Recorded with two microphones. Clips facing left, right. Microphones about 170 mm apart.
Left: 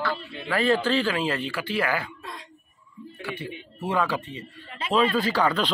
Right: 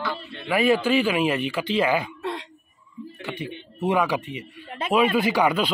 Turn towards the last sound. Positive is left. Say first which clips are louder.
# right 3 dB
turn(degrees=-10)  # may be behind; listen again after turning